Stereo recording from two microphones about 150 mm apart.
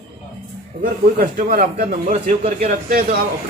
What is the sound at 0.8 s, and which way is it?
A man's voice, 70° right (ahead or behind).